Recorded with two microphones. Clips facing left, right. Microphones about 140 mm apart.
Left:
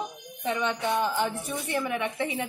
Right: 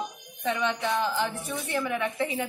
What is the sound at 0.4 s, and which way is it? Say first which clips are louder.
A woman's voice: even; 10° left (ahead or behind).